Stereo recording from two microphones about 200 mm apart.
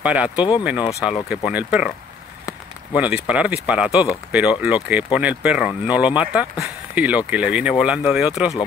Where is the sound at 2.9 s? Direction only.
5° right (ahead or behind).